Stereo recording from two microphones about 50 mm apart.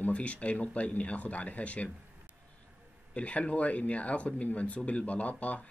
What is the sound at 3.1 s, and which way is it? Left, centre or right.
Speech, left.